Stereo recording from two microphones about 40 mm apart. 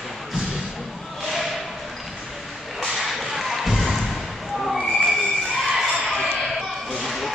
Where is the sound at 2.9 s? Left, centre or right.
Centre.